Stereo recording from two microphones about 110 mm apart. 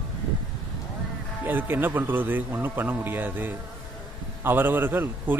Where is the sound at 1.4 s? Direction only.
15° right (ahead or behind).